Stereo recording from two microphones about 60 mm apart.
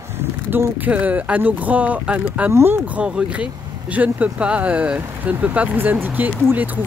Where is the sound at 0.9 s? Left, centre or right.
Right.